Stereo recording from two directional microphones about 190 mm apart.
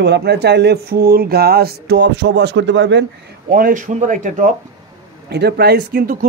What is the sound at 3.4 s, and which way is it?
Speech, 50° right (ahead or behind).